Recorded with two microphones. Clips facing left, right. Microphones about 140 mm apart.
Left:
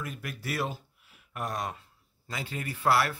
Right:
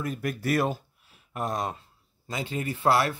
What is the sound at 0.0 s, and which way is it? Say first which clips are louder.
Speech: right 8 dB; 40° right (ahead or behind).